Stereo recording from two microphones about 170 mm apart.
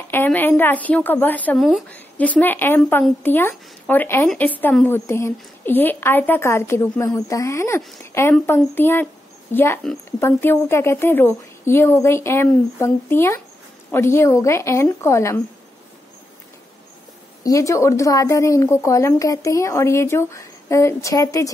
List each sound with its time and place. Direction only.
0.1 s a woman's voice: 10° left (ahead or behind)
17.4 s a woman's voice: 20° left (ahead or behind)